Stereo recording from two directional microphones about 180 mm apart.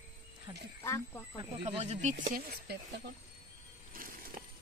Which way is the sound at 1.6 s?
35° right (ahead or behind).